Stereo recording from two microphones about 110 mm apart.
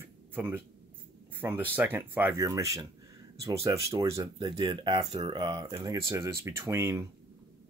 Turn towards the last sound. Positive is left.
turn(degrees=-25)  # may be behind; listen again after turning